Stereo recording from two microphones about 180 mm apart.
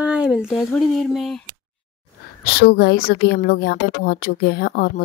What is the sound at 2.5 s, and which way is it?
A woman's voice, 60° left (ahead or behind).